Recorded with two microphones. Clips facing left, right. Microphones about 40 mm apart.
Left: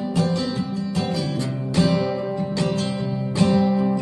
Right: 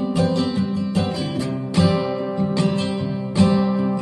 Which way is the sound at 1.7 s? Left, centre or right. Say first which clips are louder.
Right 1 dB; centre.